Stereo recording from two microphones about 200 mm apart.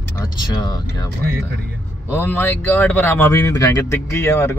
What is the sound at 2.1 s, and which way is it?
Speech, 10° left (ahead or behind).